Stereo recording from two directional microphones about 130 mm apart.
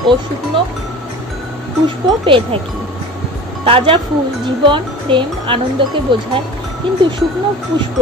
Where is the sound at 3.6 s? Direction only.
45° right (ahead or behind).